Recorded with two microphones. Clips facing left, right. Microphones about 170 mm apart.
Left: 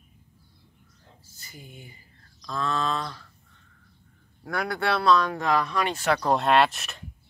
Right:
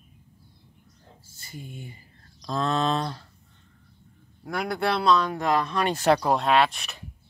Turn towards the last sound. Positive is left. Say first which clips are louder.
# left 1 dB
turn(degrees=0)  # may be behind; listen again after turning